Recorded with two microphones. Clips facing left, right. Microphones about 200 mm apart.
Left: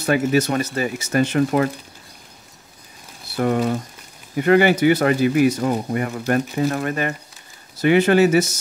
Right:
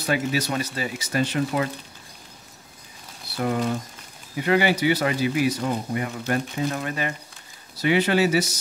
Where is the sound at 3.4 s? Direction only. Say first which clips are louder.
Left 5 dB; 60° left (ahead or behind).